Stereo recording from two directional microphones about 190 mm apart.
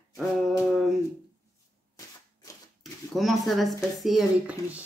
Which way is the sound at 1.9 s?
20° left (ahead or behind).